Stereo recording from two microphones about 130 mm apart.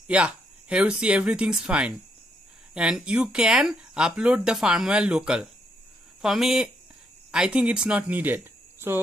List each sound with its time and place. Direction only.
0.0 s speech: 10° right (ahead or behind)